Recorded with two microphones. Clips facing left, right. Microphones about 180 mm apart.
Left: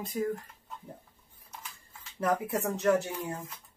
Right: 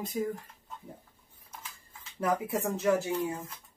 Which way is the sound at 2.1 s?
Centre (ahead or behind).